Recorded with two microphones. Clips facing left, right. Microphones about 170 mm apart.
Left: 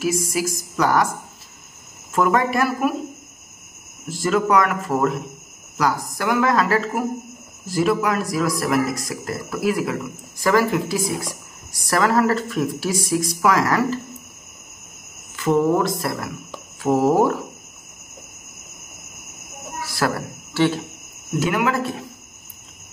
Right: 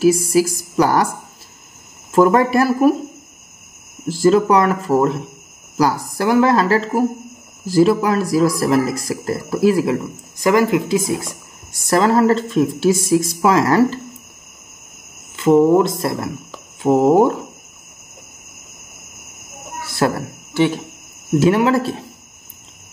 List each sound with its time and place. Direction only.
0.0 s speech: 30° right (ahead or behind)
2.1 s speech: 35° right (ahead or behind)
4.1 s a man's voice: 30° right (ahead or behind)
10.4 s a man's voice: 20° right (ahead or behind)
15.3 s a man's voice: 25° right (ahead or behind)
19.9 s a sound: 25° right (ahead or behind)
21.4 s speech: 30° right (ahead or behind)